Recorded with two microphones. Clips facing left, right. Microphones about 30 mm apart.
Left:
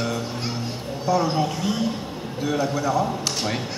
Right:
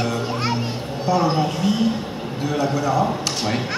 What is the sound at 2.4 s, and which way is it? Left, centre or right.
Speech, centre.